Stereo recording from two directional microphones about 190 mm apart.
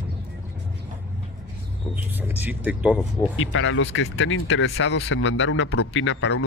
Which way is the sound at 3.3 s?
90° left.